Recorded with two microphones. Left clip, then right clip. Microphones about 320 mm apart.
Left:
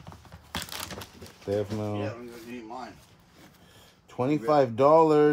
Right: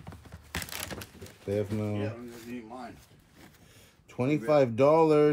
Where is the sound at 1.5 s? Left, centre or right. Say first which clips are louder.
Left 2 dB; centre.